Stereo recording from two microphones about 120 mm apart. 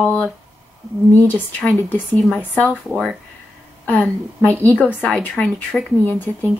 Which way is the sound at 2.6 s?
Centre (ahead or behind).